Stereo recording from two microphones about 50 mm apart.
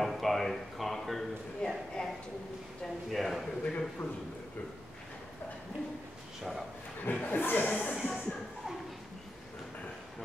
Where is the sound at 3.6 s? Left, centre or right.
Left.